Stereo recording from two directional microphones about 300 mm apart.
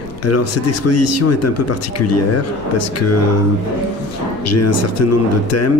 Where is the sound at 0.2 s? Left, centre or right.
Left.